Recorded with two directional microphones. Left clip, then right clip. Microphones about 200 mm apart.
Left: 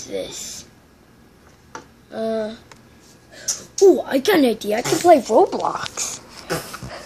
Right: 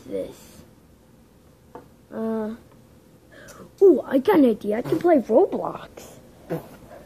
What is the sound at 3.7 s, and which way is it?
Speech, centre (ahead or behind).